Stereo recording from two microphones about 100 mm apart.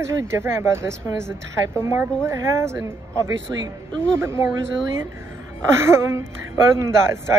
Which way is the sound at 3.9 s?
10° left (ahead or behind).